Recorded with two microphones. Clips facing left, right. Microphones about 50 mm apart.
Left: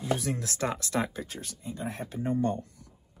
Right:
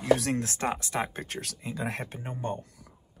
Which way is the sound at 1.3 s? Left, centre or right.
Right.